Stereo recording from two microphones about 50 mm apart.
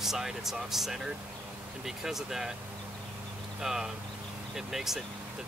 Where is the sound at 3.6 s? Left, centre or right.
Centre.